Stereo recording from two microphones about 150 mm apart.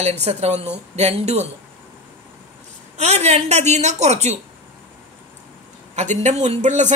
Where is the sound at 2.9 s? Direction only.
45° right (ahead or behind).